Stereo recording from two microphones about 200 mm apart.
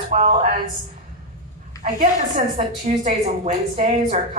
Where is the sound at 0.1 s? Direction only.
35° right (ahead or behind).